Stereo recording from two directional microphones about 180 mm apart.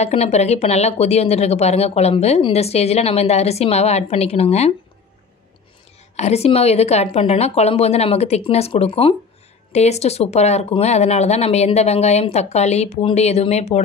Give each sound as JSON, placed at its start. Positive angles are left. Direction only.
{"t": 0.0, "sound": "speech", "side_deg": 35}
{"t": 6.1, "sound": "speech", "side_deg": 35}